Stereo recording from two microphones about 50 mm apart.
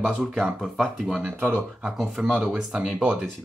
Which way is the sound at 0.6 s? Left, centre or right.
Centre.